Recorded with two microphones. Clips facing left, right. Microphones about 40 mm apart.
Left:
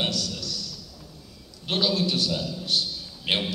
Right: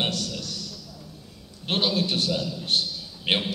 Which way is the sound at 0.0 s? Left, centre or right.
Right.